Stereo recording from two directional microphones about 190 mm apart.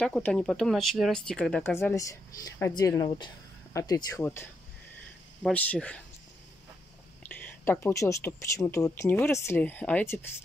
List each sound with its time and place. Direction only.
0.0 s speech: 5° left (ahead or behind)
1.8 s speech: 15° left (ahead or behind)
7.2 s speech: 10° left (ahead or behind)